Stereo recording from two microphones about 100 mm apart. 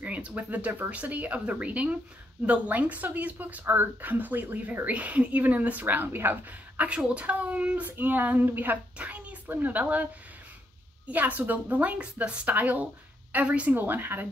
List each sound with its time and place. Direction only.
0.0 s speech: 15° right (ahead or behind)
11.1 s speech: 15° right (ahead or behind)